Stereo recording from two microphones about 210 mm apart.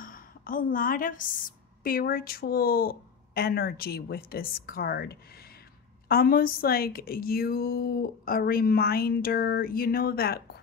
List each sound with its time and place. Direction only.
0.0 s a woman's voice: 40° left (ahead or behind)